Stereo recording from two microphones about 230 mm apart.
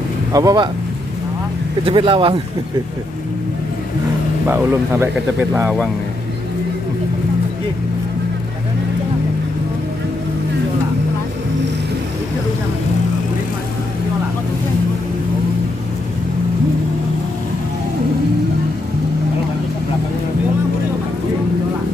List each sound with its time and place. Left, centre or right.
0.3 s speech: centre
1.9 s speech: right
4.5 s speech: centre